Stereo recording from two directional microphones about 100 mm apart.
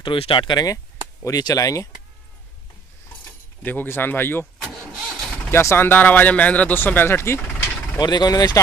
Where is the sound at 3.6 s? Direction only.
20° left (ahead or behind).